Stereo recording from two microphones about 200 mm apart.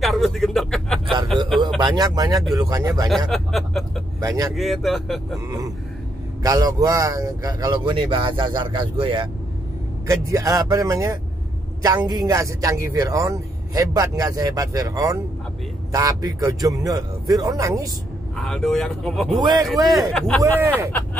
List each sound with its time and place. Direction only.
0.0 s a sound: centre (ahead or behind)
1.8 s speech: 20° right (ahead or behind)
3.3 s speech: centre (ahead or behind)
4.2 s speech: 20° right (ahead or behind)
4.6 s speech: centre (ahead or behind)
6.4 s speech: 20° right (ahead or behind)
10.0 s speech: 15° right (ahead or behind)
18.3 s speech: centre (ahead or behind)
19.4 s speech: 20° right (ahead or behind)
19.7 s speech: centre (ahead or behind)
20.4 s speech: 10° right (ahead or behind)